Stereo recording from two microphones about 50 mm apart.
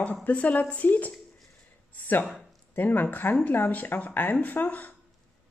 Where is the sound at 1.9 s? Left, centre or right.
Left.